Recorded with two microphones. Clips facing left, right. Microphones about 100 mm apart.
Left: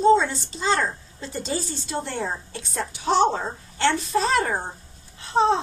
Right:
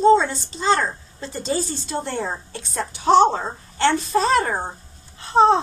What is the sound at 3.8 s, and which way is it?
Speech, 35° right (ahead or behind).